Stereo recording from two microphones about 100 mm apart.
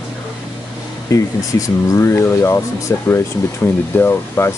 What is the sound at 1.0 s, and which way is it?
Speech, 35° left (ahead or behind).